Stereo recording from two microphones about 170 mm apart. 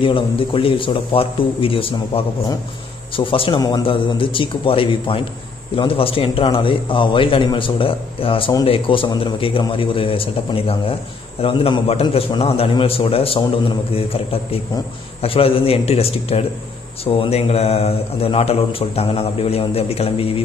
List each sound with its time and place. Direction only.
0.0 s a man's voice: 30° left (ahead or behind)